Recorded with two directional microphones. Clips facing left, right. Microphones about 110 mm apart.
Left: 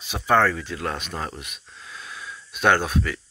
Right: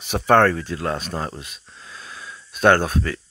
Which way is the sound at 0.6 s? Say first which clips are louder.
Right 4 dB; 30° right (ahead or behind).